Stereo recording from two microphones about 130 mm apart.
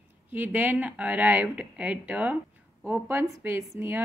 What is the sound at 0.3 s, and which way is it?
A woman's voice, 15° right (ahead or behind).